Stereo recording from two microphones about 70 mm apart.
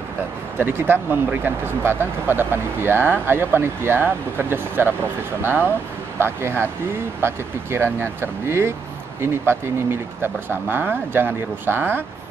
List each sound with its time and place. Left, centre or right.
0.6 s speech: right
6.1 s speech: right